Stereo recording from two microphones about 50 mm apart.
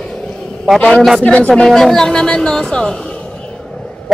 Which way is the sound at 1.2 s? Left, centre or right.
Left.